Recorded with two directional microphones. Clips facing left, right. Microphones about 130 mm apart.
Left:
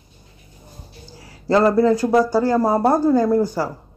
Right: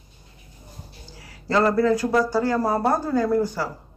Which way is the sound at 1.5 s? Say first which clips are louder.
Left 4 dB; 25° left (ahead or behind).